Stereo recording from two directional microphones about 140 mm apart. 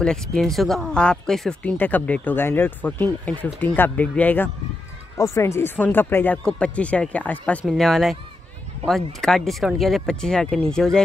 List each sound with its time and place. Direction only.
0.0 s speech: 5° left (ahead or behind)